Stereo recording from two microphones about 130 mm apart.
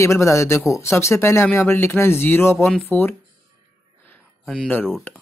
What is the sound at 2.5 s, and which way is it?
Speech, 5° left (ahead or behind).